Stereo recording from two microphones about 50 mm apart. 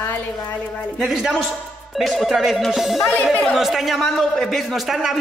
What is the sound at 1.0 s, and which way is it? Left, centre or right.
A man's voice, centre.